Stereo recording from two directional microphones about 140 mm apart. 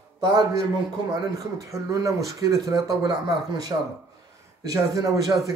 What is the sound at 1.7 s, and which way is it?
A man's voice, 20° right (ahead or behind).